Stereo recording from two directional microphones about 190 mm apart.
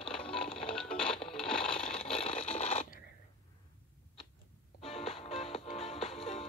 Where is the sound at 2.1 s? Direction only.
30° left (ahead or behind).